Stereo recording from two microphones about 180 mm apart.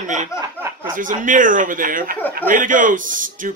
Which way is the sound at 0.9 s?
45° right (ahead or behind).